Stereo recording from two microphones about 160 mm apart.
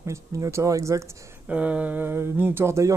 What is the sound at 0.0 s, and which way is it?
Speech, 20° right (ahead or behind).